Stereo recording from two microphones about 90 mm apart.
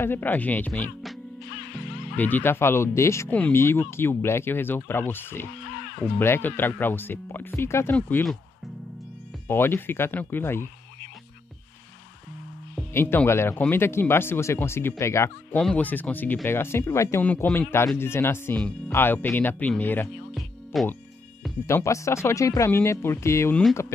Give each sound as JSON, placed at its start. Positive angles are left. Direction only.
{"t": 0.0, "sound": "speech", "side_deg": 25}
{"t": 2.1, "sound": "speech", "side_deg": 20}
{"t": 3.3, "sound": "speech", "side_deg": 15}
{"t": 3.5, "sound": "speech", "side_deg": 30}
{"t": 9.5, "sound": "speech", "side_deg": 25}
{"t": 12.9, "sound": "speech", "side_deg": 25}
{"t": 15.5, "sound": "speech", "side_deg": 15}
{"t": 17.2, "sound": "speech", "side_deg": 20}
{"t": 20.3, "sound": "music", "side_deg": 0}
{"t": 21.6, "sound": "speech", "side_deg": 30}